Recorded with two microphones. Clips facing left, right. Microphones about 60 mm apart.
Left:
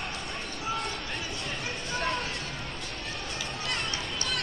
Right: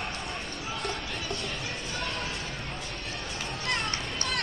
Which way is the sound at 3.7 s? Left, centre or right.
Right.